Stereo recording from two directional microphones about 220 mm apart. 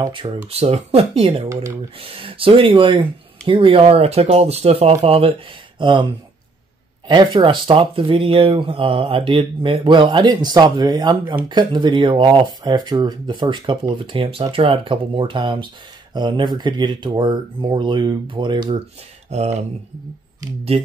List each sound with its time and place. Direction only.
0.0 s speech: 20° right (ahead or behind)
1.5 s speech: 15° right (ahead or behind)
2.0 s speech: 25° right (ahead or behind)
20.7 s speech: 25° right (ahead or behind)